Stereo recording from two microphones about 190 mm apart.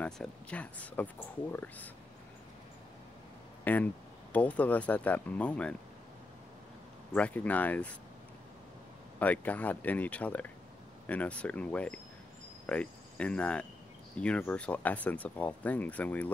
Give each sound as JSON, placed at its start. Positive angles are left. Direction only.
{"t": 0.0, "sound": "speech", "side_deg": 5}
{"t": 3.6, "sound": "speech", "side_deg": 10}
{"t": 7.2, "sound": "speech", "side_deg": 10}
{"t": 9.2, "sound": "speech", "side_deg": 10}
{"t": 12.6, "sound": "cricket", "side_deg": 5}
{"t": 14.1, "sound": "speech", "side_deg": 5}